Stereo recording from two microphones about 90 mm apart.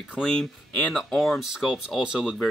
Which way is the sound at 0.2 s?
10° left (ahead or behind).